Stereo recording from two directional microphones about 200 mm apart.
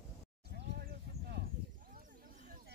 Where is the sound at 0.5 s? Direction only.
55° right (ahead or behind).